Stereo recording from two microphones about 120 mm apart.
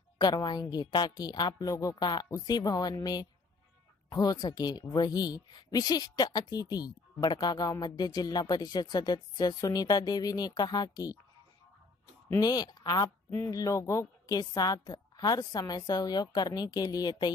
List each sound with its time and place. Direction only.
0.2 s a woman's voice: 35° left (ahead or behind)
12.3 s a woman's voice: 30° left (ahead or behind)